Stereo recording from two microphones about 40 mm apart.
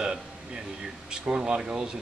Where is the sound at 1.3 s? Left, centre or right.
Right.